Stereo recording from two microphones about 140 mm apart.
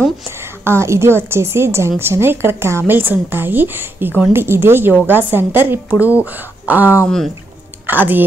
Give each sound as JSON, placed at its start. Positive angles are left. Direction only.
{"t": 0.7, "sound": "a woman's voice", "side_deg": -20}